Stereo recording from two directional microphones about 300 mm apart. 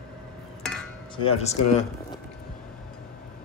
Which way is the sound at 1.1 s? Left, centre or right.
Centre.